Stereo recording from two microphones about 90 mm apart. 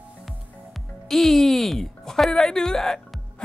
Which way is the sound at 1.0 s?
5° left (ahead or behind).